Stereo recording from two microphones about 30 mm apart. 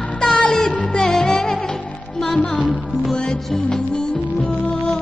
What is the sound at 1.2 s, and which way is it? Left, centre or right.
Music, left.